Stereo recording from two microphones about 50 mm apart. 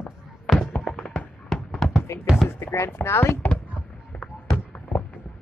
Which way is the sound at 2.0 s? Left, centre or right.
Left.